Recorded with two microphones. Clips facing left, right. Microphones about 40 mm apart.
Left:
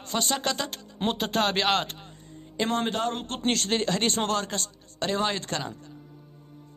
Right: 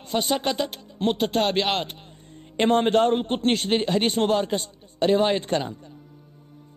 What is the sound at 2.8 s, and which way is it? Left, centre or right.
Speech, right.